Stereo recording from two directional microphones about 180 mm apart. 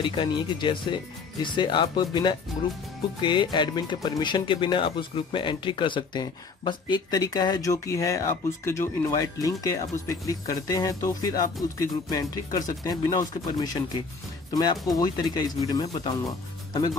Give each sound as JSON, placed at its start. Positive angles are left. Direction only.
{"t": 0.0, "sound": "speech", "side_deg": 25}